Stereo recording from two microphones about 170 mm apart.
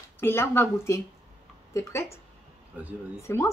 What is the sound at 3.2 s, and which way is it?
Speech, 15° left (ahead or behind).